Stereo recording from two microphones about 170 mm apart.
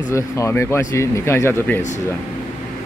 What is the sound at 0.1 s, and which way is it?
Speech, 15° left (ahead or behind).